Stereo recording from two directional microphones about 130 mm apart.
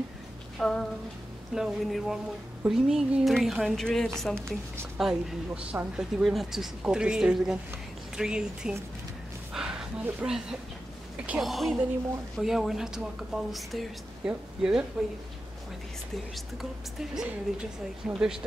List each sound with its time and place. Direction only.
0.6 s music: 5° left (ahead or behind)
1.5 s a woman's voice: centre (ahead or behind)
9.5 s a sound: 5° right (ahead or behind)
10.0 s a woman's voice: 5° right (ahead or behind)
17.0 s a woman's voice: 5° right (ahead or behind)